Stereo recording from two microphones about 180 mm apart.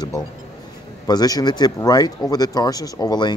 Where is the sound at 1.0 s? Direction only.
20° left (ahead or behind).